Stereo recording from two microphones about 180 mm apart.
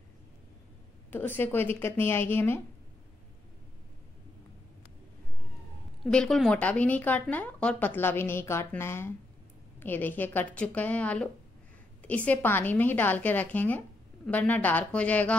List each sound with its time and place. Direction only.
1.1 s a woman's voice: 10° left (ahead or behind)
6.0 s a woman's voice: 5° left (ahead or behind)